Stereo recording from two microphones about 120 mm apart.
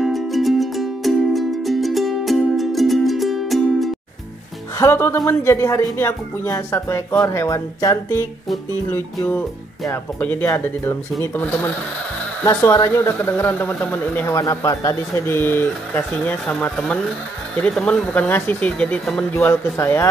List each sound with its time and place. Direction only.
0.0 s music: centre (ahead or behind)
4.7 s speech: 20° left (ahead or behind)
14.2 s speech: 25° left (ahead or behind); by 19.2 s 10° left (ahead or behind)
19.3 s speech: 20° left (ahead or behind)